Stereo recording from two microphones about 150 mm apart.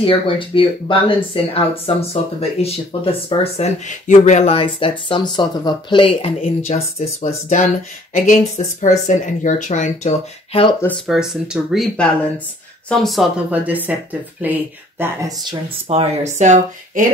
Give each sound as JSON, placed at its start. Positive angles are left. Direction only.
{"t": 0.0, "sound": "speech", "side_deg": 35}
{"t": 11.1, "sound": "speech", "side_deg": -5}
{"t": 13.5, "sound": "speech", "side_deg": -10}
{"t": 15.9, "sound": "speech", "side_deg": -45}